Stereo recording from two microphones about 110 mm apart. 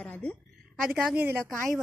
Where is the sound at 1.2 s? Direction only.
15° right (ahead or behind).